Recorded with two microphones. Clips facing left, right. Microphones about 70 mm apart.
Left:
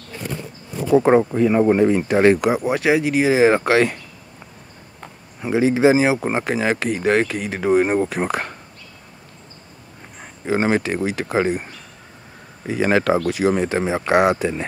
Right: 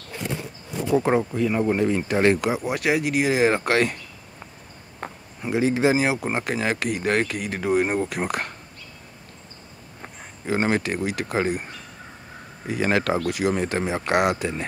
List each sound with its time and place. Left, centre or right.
0.8 s speech: left
5.5 s speech: left
10.4 s speech: centre
12.7 s speech: centre